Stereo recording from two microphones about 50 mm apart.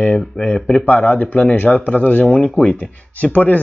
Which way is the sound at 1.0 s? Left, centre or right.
Left.